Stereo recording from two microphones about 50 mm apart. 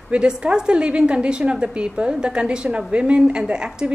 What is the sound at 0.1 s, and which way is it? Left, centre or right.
A woman's voice, right.